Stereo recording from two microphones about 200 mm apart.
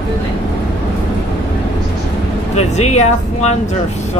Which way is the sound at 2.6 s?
35° left (ahead or behind).